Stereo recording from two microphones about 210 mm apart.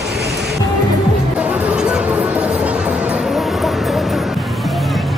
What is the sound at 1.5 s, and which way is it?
Music, 5° right (ahead or behind).